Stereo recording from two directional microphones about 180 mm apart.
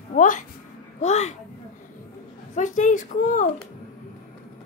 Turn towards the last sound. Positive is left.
turn(degrees=45)  # may be behind; listen again after turning